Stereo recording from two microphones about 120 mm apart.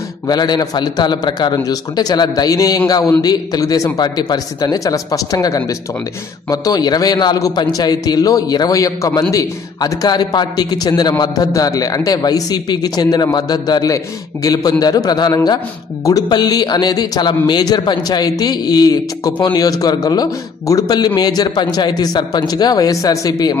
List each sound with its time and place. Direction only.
0.3 s a man's voice: 35° left (ahead or behind)